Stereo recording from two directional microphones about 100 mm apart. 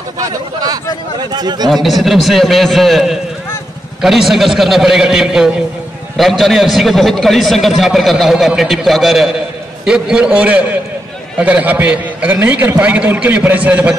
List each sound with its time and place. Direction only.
0.2 s speech: 40° right (ahead or behind)
1.7 s a man's voice: centre (ahead or behind)